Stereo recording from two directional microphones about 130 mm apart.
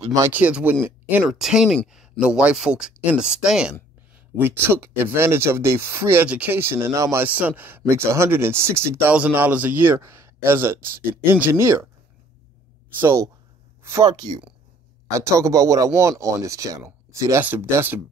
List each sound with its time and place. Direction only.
0.0 s speech: 25° right (ahead or behind)
0.3 s speech: 10° right (ahead or behind)
4.4 s speech: 15° right (ahead or behind)
13.0 s speech: 25° right (ahead or behind)
14.1 s speech: 30° right (ahead or behind); by 18.0 s 15° right (ahead or behind)